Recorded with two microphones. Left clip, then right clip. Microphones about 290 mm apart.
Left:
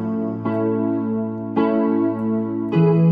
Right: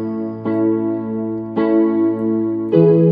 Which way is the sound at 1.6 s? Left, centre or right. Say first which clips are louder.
Right 4 dB; left.